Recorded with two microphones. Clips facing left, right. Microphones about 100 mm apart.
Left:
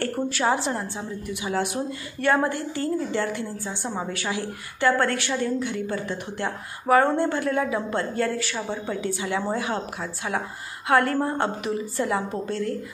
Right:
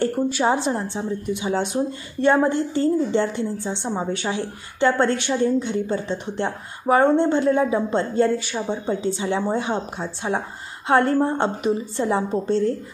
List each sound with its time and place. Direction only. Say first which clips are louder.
0.0 s a woman's voice: right 4 dB; 20° right (ahead or behind)